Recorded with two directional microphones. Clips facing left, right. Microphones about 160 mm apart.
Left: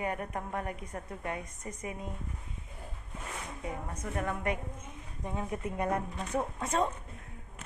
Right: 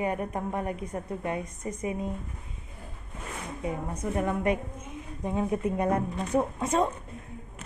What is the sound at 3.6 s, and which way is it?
A woman's voice, 20° right (ahead or behind).